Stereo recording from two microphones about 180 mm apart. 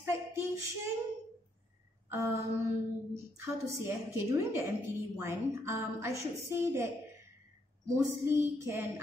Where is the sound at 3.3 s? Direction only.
15° right (ahead or behind).